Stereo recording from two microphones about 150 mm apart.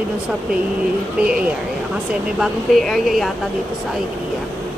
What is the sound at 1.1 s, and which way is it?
Speech, 5° right (ahead or behind).